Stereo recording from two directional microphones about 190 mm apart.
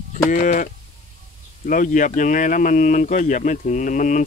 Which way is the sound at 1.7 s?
45° left (ahead or behind).